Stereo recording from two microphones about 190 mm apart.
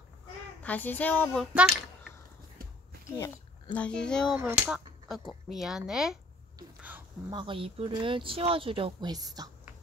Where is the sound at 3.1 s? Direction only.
10° left (ahead or behind).